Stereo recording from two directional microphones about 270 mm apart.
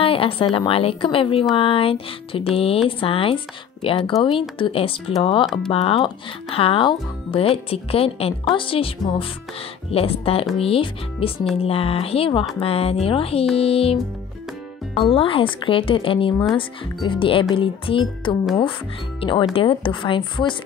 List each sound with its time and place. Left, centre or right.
0.0 s speech: centre
15.0 s speech: centre